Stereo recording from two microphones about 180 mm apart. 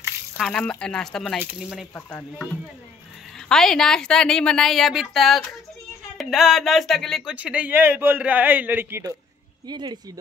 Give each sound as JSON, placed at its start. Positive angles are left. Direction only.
{"t": 0.4, "sound": "a woman's voice", "side_deg": 5}
{"t": 2.0, "sound": "a woman's voice", "side_deg": 10}
{"t": 9.7, "sound": "speech", "side_deg": -25}